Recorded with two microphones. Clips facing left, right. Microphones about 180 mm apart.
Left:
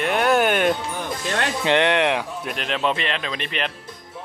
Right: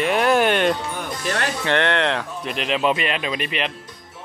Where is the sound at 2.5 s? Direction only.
Centre (ahead or behind).